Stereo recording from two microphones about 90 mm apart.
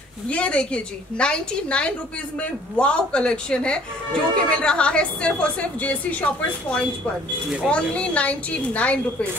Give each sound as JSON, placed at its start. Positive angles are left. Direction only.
{"t": 0.3, "sound": "speech", "side_deg": 10}